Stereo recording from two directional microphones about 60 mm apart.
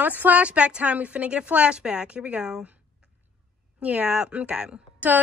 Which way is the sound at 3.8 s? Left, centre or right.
Right.